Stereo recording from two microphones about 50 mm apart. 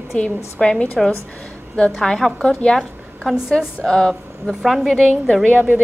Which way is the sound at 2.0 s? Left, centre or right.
Centre.